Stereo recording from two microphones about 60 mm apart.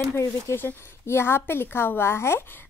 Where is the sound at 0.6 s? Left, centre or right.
Left.